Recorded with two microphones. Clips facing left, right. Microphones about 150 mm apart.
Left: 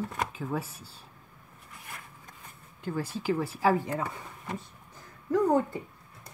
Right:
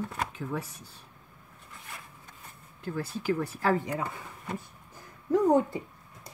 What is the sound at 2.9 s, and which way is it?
Speech, 10° left (ahead or behind).